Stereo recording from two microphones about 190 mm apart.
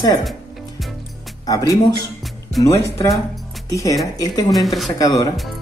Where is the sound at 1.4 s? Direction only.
20° left (ahead or behind).